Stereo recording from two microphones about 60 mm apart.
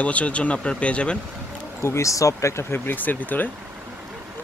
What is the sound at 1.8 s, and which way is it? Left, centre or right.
Speech, left.